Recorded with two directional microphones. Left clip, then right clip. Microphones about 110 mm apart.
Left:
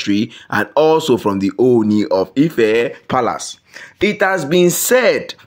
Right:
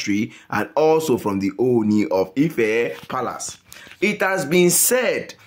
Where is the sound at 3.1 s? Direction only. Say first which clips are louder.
Left 9 dB; 65° left (ahead or behind).